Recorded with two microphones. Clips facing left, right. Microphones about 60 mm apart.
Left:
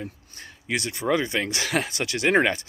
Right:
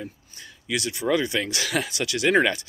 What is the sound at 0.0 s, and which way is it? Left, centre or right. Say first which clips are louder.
Speech: left 1 dB; left.